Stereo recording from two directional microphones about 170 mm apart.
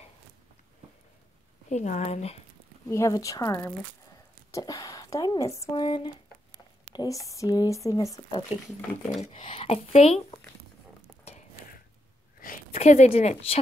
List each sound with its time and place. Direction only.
1.7 s speech: 45° left (ahead or behind)
2.9 s speech: 20° left (ahead or behind)
9.2 s speech: 40° left (ahead or behind)
12.4 s a sound: 55° left (ahead or behind)
12.7 s speech: 40° left (ahead or behind)